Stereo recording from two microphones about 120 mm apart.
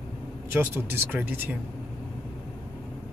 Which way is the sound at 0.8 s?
20° right (ahead or behind).